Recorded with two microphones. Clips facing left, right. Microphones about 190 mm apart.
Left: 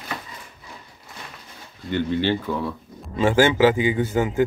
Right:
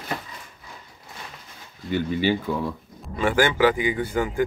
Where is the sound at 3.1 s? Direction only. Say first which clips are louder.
Left 3 dB; 25° left (ahead or behind).